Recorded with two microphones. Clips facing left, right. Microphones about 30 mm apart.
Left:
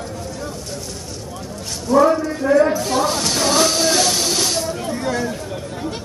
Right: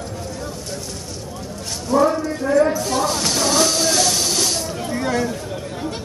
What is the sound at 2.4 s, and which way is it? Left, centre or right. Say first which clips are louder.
Speech: left 2 dB; centre.